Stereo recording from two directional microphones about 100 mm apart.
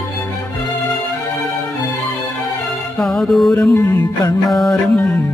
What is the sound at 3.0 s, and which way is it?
Music, 5° left (ahead or behind).